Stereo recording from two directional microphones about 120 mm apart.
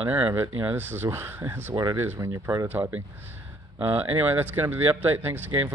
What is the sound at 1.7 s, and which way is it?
Speech, 35° right (ahead or behind).